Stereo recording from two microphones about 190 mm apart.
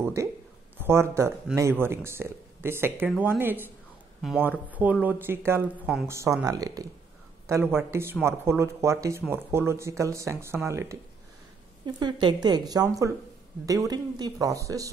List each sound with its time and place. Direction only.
0.0 s a man's voice: 15° right (ahead or behind)